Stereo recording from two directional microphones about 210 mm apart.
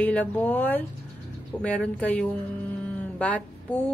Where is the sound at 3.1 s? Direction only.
5° left (ahead or behind).